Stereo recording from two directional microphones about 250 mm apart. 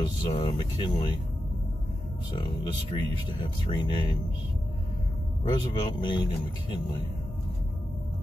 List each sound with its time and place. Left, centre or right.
0.0 s speech: centre
2.9 s speech: left
5.5 s speech: centre